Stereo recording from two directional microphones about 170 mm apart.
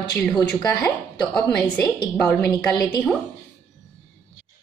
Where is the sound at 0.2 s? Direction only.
5° left (ahead or behind).